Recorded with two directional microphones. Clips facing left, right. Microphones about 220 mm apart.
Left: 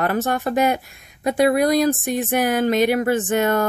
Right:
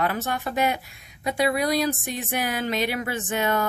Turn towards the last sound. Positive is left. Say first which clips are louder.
# left 6 dB
turn(degrees=50)  # may be behind; listen again after turning